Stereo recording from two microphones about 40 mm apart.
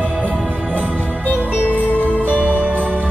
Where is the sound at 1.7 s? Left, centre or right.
Left.